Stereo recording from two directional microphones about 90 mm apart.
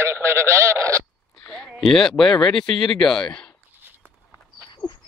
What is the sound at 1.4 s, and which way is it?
Speech, 5° left (ahead or behind).